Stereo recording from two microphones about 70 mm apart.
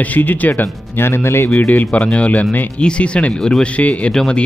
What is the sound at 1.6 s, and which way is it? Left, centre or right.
Speech, left.